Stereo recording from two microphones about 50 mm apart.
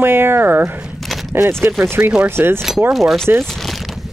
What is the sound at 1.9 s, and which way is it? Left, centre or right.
Speech, right.